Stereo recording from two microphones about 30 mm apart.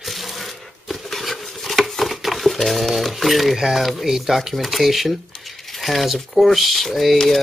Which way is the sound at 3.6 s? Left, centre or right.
Centre.